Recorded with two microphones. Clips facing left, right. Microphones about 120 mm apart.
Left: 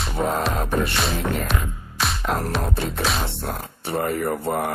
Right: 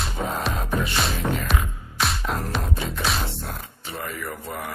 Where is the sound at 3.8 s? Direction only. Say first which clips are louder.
Left 10 dB; 55° left (ahead or behind).